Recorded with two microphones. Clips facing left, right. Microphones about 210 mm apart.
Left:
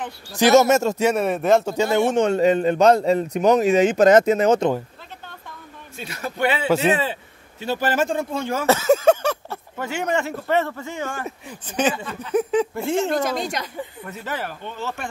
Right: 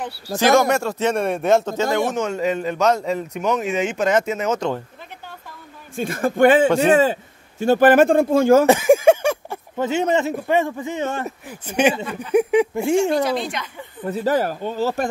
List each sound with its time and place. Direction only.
0.4 s speech: 20° left (ahead or behind)
1.0 s speech: 5° left (ahead or behind)
2.1 s a man's voice: 30° left (ahead or behind)
5.9 s speech: 50° right (ahead or behind)
8.6 s speech: 15° right (ahead or behind)
11.2 s speech: 10° right (ahead or behind)
13.2 s a woman's voice: 45° left (ahead or behind)
14.0 s speech: 35° right (ahead or behind)